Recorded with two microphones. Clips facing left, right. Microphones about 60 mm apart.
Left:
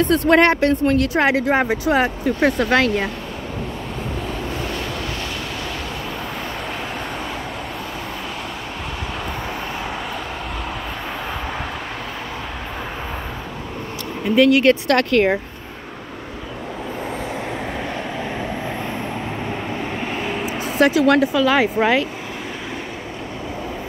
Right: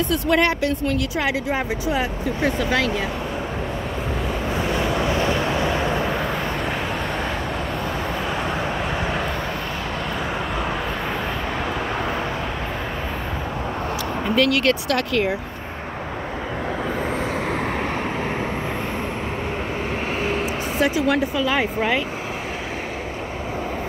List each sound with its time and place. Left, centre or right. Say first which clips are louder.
0.0 s speech: left 5 dB; left
4.6 s vehicle: right 4 dB; centre
14.3 s speech: left 6 dB; centre
14.9 s speech: left 5 dB; left
20.2 s vehicle: right 1 dB; centre
20.8 s speech: left 6 dB; left